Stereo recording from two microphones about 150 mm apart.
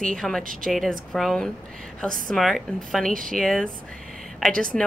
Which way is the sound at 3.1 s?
65° right (ahead or behind).